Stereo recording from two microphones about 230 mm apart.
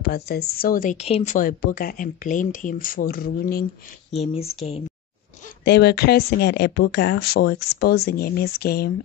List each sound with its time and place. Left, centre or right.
0.0 s speech: left
4.1 s speech: left
5.7 s speech: left